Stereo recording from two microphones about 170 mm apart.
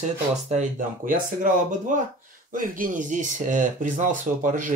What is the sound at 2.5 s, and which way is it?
Speech, 55° right (ahead or behind).